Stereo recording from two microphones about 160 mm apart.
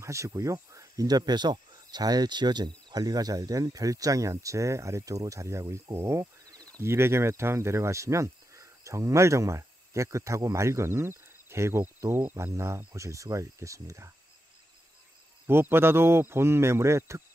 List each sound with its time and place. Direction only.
0.0 s speech: 20° right (ahead or behind)
15.4 s speech: 15° right (ahead or behind)